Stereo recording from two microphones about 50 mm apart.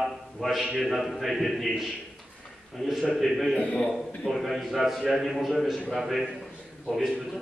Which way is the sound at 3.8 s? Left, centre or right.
Centre.